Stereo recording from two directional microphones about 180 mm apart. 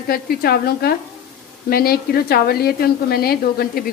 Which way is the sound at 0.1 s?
60° left (ahead or behind).